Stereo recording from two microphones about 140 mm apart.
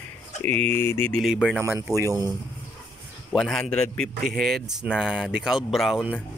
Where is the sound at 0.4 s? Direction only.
15° left (ahead or behind).